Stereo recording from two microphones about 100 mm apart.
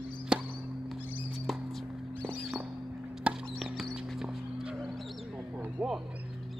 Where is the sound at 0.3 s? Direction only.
5° right (ahead or behind).